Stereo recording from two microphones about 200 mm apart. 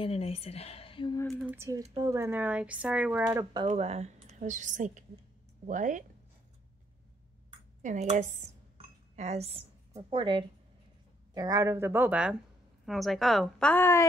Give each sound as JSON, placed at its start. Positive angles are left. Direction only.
{"t": 0.0, "sound": "a woman's voice", "side_deg": 30}
{"t": 1.4, "sound": "speech", "side_deg": -10}
{"t": 3.6, "sound": "a woman's voice", "side_deg": -35}
{"t": 7.8, "sound": "a woman's voice", "side_deg": -35}